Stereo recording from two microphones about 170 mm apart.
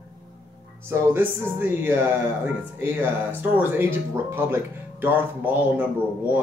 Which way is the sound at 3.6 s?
10° right (ahead or behind).